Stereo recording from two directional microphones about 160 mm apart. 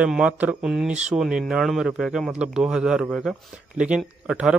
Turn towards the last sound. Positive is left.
turn(degrees=-5)  # may be behind; listen again after turning